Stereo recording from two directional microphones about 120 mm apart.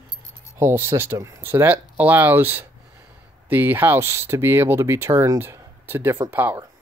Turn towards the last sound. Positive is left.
turn(degrees=-20)  # may be behind; listen again after turning